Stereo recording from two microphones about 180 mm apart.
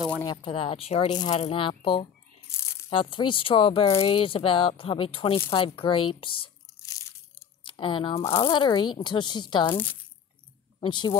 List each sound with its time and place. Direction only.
0.2 s speech: 25° left (ahead or behind)
10.8 s speech: 25° left (ahead or behind)